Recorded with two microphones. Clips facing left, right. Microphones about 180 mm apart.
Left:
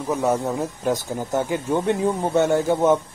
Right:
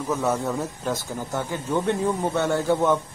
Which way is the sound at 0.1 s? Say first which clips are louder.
Left 3 dB; 15° left (ahead or behind).